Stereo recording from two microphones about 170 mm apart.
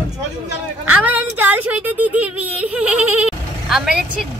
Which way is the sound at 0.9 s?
10° right (ahead or behind).